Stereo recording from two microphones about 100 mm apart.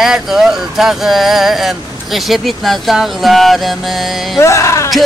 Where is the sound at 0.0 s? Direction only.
5° right (ahead or behind).